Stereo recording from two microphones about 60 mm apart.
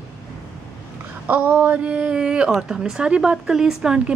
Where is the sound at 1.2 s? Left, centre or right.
Right.